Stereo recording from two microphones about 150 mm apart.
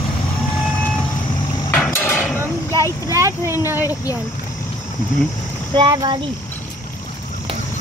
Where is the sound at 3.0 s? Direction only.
20° right (ahead or behind).